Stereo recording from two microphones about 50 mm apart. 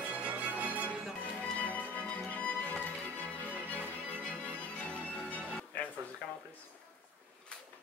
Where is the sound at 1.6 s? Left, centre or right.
Left.